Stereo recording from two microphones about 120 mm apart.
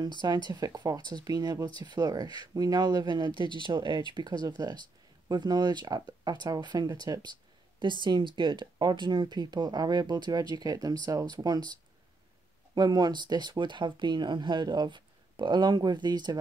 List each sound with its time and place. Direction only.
0.0 s speech: 35° right (ahead or behind)
12.7 s speech: 35° right (ahead or behind)